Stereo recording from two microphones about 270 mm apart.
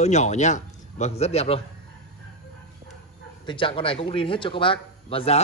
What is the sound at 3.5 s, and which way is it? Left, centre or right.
Speech, centre.